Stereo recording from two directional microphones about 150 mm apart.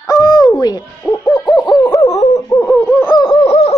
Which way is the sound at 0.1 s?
25° left (ahead or behind).